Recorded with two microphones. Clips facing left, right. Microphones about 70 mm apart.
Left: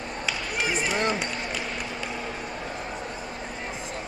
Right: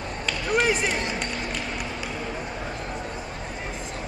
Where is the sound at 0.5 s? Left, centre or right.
Right.